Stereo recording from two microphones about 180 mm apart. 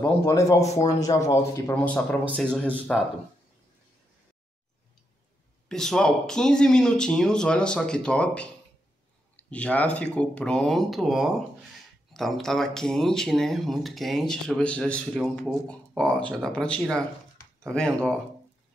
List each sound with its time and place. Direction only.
0.0 s speech: 15° left (ahead or behind)
5.7 s speech: centre (ahead or behind)